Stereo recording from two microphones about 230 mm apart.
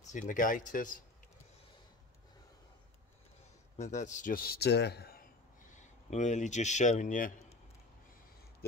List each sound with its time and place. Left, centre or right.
0.1 s a man's voice: left
3.7 s a man's voice: left
5.8 s a man's voice: left